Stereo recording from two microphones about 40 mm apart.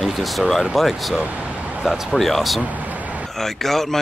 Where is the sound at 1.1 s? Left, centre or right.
Right.